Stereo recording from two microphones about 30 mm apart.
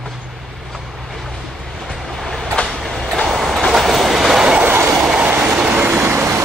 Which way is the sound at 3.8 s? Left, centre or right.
Centre.